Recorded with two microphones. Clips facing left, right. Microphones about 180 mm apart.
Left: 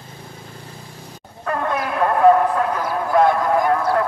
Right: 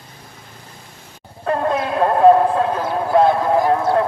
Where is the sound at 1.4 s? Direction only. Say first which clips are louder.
Right 3 dB; 25° right (ahead or behind).